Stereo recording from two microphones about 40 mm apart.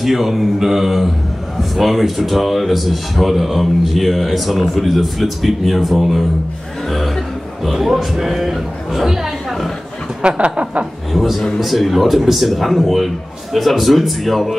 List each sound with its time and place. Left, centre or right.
0.0 s a man's voice: centre
7.7 s speech: centre
10.2 s a sound: right
11.1 s a man's voice: centre